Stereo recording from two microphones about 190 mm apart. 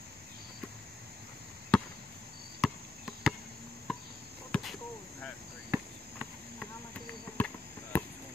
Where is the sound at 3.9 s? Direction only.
Centre (ahead or behind).